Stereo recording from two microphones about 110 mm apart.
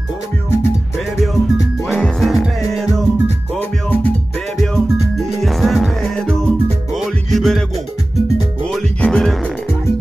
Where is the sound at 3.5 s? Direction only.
15° left (ahead or behind).